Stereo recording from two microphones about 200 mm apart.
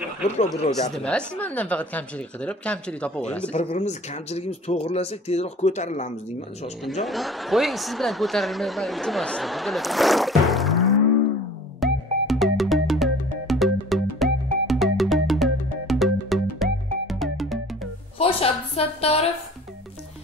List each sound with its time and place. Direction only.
0.9 s speech: 5° left (ahead or behind)
3.7 s speech: 35° left (ahead or behind)
7.1 s speech: centre (ahead or behind)
11.8 s music: centre (ahead or behind)
18.2 s a woman's voice: 30° left (ahead or behind)